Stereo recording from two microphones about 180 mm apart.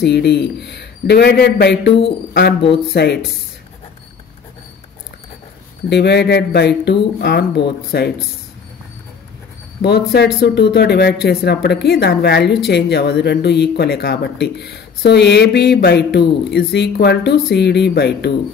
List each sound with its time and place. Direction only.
0.0 s speech: 65° left (ahead or behind)
5.9 s speech: 70° left (ahead or behind)
9.8 s speech: 65° left (ahead or behind)